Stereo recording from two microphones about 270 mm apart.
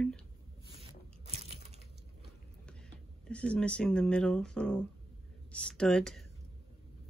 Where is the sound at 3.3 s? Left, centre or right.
Centre.